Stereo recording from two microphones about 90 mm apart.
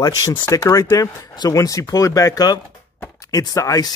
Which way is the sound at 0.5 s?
35° left (ahead or behind).